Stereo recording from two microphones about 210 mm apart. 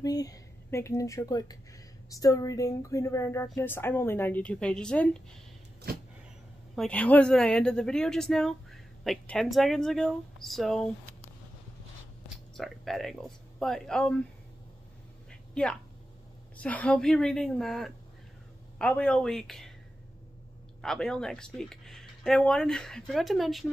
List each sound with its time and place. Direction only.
0.0 s a woman's voice: 15° left (ahead or behind)
6.7 s speech: 5° left (ahead or behind)
12.5 s speech: centre (ahead or behind)
15.5 s a woman's voice: 5° left (ahead or behind)
20.8 s speech: centre (ahead or behind)